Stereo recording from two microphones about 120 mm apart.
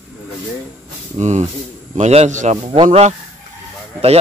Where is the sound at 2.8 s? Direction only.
70° right (ahead or behind).